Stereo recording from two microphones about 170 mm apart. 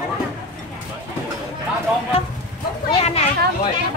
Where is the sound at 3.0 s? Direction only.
40° left (ahead or behind).